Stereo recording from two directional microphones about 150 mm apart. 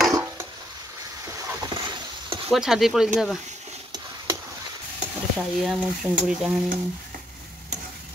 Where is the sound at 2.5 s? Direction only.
Centre (ahead or behind).